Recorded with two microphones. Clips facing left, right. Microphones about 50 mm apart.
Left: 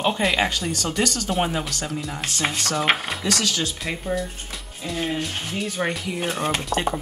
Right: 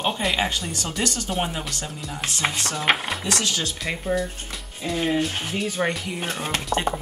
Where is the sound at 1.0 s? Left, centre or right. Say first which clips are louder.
Left 2 dB; right.